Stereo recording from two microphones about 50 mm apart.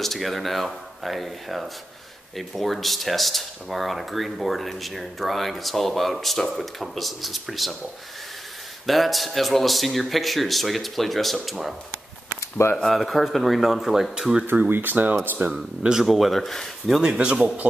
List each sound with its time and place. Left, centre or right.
0.0 s speech: centre
8.8 s speech: centre
12.4 s a sound: left
12.8 s speech: centre
14.4 s speech: right
15.5 s speech: centre
17.0 s speech: centre